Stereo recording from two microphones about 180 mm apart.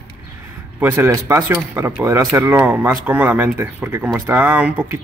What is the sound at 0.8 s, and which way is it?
Speech, 15° right (ahead or behind).